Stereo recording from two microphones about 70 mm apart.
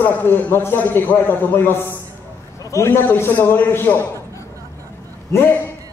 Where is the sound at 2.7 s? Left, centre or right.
Left.